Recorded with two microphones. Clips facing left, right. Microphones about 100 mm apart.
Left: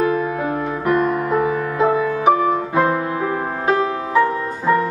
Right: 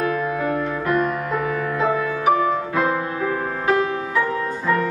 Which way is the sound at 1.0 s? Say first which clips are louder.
Left 5 dB; 10° left (ahead or behind).